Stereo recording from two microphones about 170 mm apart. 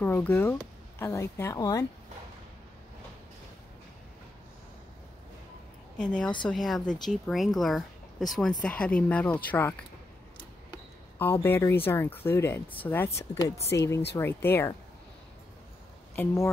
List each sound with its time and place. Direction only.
0.0 s speech: 10° left (ahead or behind)
5.9 s speech: 5° left (ahead or behind)
10.7 s a sound: 10° left (ahead or behind)
11.4 s speech: 10° left (ahead or behind)